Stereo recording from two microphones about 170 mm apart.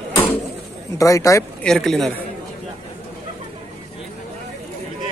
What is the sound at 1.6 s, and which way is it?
Speech, 5° left (ahead or behind).